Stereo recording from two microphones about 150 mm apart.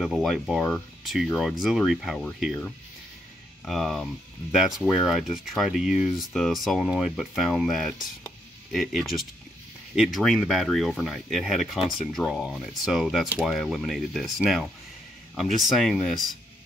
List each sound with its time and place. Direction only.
0.0 s speech: centre (ahead or behind)